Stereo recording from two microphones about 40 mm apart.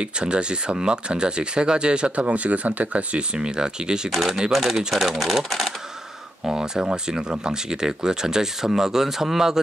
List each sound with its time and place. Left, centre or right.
0.0 s speech: right
3.3 s speech: right
4.1 s speech: centre
6.5 s speech: centre